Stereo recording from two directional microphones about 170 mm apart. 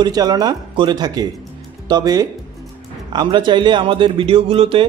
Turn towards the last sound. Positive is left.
turn(degrees=-35)  # may be behind; listen again after turning